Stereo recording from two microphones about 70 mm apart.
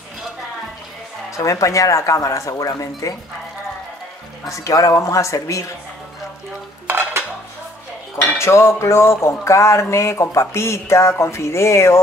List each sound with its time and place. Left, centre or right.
1.3 s dishes: left
2.5 s speech: left
4.5 s dishes: left
6.9 s dishes: right
8.2 s dishes: left